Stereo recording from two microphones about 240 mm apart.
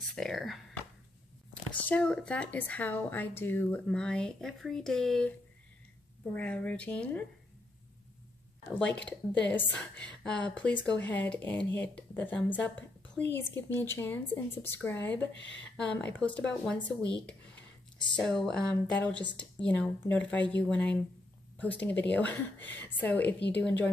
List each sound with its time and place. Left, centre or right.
0.1 s speech: centre
6.3 s speech: centre
8.7 s a woman's voice: centre
11.5 s speech: left
11.9 s a woman's voice: centre
15.3 s speech: left
15.7 s a woman's voice: centre